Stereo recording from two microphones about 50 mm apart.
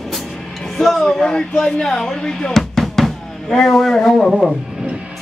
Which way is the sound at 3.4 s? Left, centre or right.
Centre.